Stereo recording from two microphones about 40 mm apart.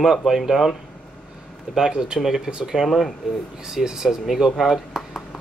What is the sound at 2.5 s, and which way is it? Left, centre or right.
Speech, right.